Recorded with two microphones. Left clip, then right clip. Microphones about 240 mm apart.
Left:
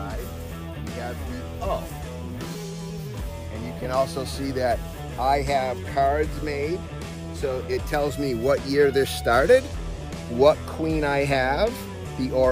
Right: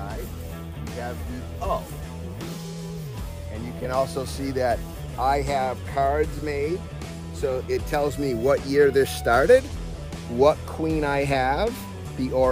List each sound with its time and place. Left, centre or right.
3.8 s speech: right
5.2 s speech: centre